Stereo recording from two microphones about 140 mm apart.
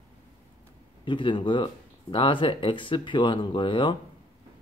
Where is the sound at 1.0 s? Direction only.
35° left (ahead or behind).